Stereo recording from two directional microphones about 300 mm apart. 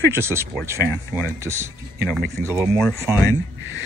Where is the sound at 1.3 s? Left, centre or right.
Centre.